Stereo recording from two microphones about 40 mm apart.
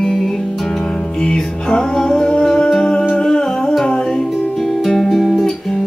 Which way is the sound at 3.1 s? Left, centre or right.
Centre.